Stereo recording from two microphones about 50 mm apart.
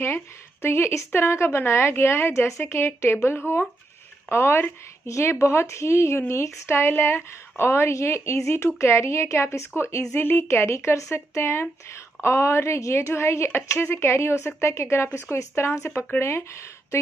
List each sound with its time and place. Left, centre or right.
0.0 s speech: left
2.6 s speech: left
3.3 s speech: left
4.3 s speech: left
5.0 s a woman's voice: left
5.3 s a woman's voice: left
10.2 s speech: left
13.1 s speech: left